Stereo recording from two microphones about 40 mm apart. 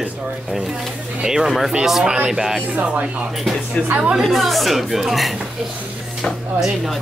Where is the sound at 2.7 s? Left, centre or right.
Right.